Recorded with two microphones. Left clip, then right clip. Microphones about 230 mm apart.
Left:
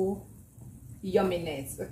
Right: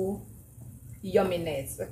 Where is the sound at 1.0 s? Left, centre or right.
Centre.